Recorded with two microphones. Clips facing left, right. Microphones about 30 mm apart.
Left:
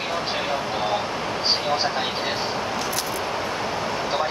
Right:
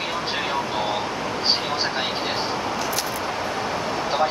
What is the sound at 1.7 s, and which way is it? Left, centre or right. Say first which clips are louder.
Speech: left 1 dB; right.